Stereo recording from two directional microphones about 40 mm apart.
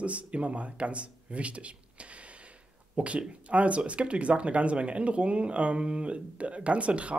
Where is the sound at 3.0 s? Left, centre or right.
Right.